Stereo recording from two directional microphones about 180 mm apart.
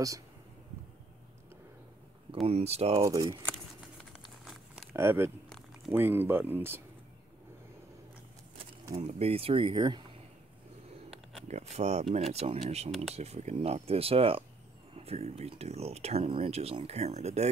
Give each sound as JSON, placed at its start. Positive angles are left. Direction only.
{"t": 2.4, "sound": "speech", "side_deg": -35}
{"t": 3.0, "sound": "speech", "side_deg": -20}
{"t": 4.1, "sound": "a sound", "side_deg": -5}
{"t": 4.9, "sound": "speech", "side_deg": -15}
{"t": 8.9, "sound": "speech", "side_deg": -35}
{"t": 11.4, "sound": "speech", "side_deg": -40}